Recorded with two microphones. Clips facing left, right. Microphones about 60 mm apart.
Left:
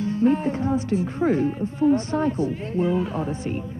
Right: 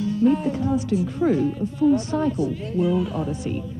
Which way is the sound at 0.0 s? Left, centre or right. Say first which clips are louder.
Right 1 dB; left.